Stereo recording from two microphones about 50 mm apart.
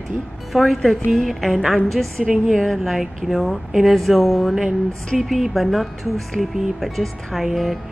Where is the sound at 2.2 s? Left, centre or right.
Centre.